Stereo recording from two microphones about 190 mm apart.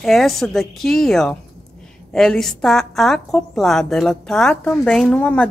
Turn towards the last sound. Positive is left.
turn(degrees=5)  # may be behind; listen again after turning